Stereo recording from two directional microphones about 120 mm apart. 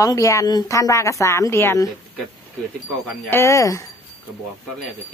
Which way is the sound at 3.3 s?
20° left (ahead or behind).